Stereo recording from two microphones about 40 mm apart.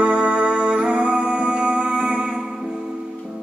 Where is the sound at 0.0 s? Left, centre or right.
Right.